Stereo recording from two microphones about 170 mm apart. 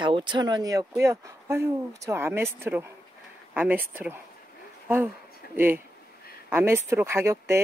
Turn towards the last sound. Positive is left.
turn(degrees=-15)  # may be behind; listen again after turning